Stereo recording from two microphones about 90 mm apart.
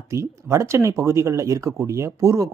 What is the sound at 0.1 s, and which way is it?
Speech, 35° right (ahead or behind).